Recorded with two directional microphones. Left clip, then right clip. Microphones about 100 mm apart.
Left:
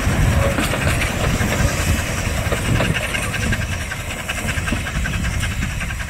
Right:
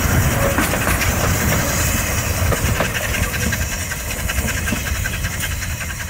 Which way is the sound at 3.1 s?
35° right (ahead or behind).